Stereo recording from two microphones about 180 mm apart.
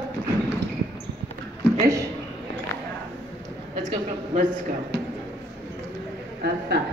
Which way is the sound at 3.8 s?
40° right (ahead or behind).